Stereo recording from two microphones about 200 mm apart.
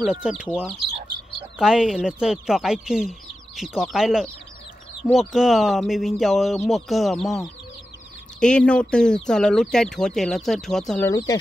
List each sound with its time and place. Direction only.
0.0 s speech: 5° right (ahead or behind)
1.6 s speech: 5° right (ahead or behind)
11.1 s speech: 15° left (ahead or behind)